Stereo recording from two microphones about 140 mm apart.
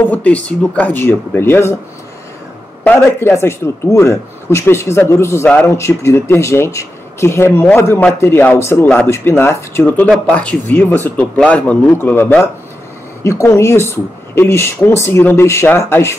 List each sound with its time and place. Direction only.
0.0 s a man's voice: 10° left (ahead or behind)
2.8 s a man's voice: 15° left (ahead or behind)